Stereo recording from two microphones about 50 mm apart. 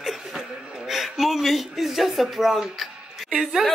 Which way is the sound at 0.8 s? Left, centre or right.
Centre.